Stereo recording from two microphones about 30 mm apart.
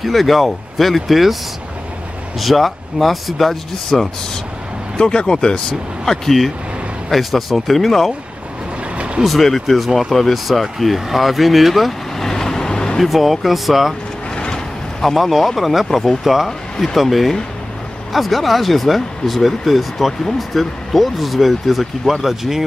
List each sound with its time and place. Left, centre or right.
0.0 s speech: centre
4.9 s speech: left
5.7 s speech: centre
7.1 s speech: centre
8.9 s vehicle: right
9.4 s speech: centre
12.2 s vehicle: centre
13.0 s speech: centre
14.5 s a sound: centre
15.1 s speech: centre
16.8 s speech: centre